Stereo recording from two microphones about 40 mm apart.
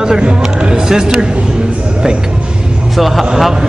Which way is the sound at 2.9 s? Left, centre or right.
Centre.